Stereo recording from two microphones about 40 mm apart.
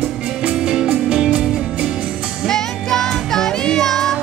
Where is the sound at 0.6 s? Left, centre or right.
Centre.